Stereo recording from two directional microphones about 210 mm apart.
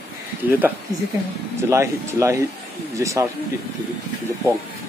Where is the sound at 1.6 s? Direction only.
15° right (ahead or behind).